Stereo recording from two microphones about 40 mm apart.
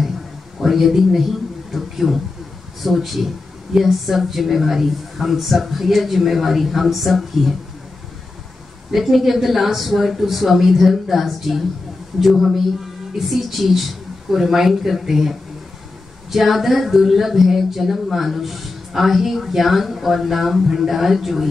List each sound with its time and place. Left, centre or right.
0.6 s a man's voice: centre
8.9 s speech: centre